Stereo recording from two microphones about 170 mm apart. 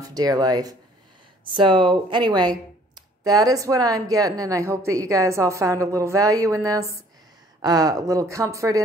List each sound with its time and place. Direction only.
0.0 s a woman's voice: 20° right (ahead or behind)